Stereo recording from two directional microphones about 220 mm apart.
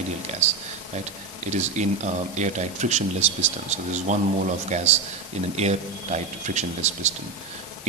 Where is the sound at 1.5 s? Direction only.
30° right (ahead or behind).